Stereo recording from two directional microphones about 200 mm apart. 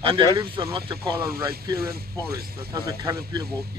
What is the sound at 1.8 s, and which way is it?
Speech, 50° right (ahead or behind).